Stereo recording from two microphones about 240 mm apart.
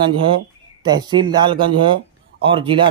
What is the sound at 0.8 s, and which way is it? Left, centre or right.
A man's voice, centre.